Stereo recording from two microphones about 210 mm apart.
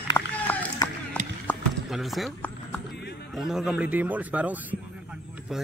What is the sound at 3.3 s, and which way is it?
Speech, centre (ahead or behind).